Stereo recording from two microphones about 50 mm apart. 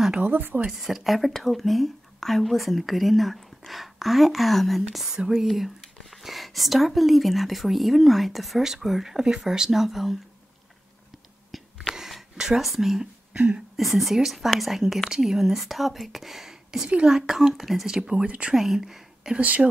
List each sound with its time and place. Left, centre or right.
0.2 s speech: right
0.7 s speech: centre
5.1 s speech: centre
11.5 s a sound: centre
13.3 s a sound: right
13.7 s speech: centre
18.1 s speech: right
18.5 s speech: centre